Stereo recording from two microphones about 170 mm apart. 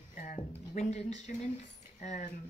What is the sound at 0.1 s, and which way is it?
Speech, 45° left (ahead or behind).